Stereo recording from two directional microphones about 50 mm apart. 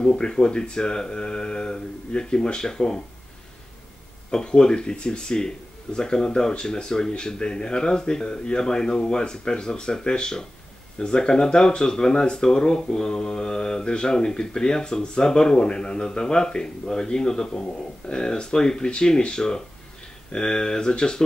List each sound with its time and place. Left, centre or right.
0.1 s speech: centre
4.3 s speech: centre